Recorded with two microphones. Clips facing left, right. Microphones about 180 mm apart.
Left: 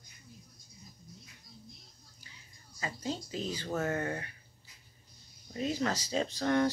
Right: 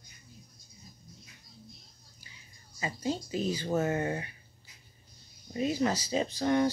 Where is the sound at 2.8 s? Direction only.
10° right (ahead or behind).